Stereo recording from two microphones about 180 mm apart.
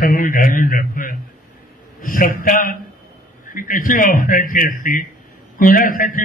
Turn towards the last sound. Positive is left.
turn(degrees=50)  # may be behind; listen again after turning